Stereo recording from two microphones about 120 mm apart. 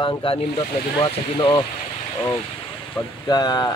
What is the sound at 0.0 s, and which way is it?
Speech, 45° left (ahead or behind).